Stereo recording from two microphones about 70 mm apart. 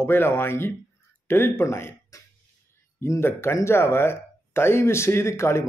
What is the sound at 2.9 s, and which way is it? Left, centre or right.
A man's voice, left.